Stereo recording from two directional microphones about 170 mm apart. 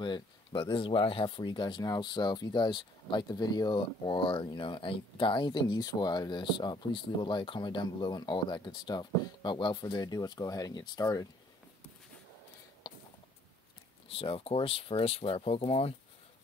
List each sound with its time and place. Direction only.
0.0 s speech: 25° left (ahead or behind)
14.0 s speech: 35° left (ahead or behind)